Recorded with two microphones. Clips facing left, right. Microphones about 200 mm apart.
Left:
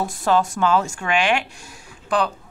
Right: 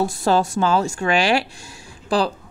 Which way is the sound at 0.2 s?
30° right (ahead or behind).